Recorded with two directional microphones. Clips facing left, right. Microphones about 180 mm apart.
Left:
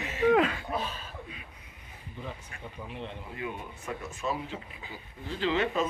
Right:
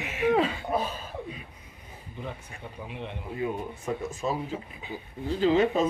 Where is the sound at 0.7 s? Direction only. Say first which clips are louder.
Right 5 dB; 45° right (ahead or behind).